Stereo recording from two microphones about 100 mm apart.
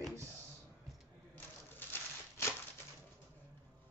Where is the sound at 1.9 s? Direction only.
30° left (ahead or behind).